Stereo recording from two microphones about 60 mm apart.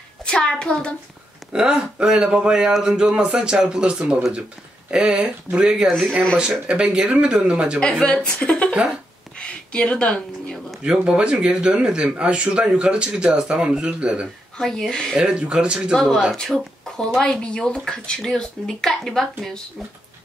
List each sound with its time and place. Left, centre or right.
0.2 s child singing: centre
1.5 s speech: centre
5.9 s speech: centre
6.3 s speech: centre
7.8 s speech: centre
10.8 s speech: centre
14.6 s speech: centre
15.1 s speech: centre
15.9 s speech: centre
16.3 s speech: centre